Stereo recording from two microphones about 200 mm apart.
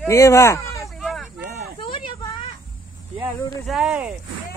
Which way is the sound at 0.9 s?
Centre (ahead or behind).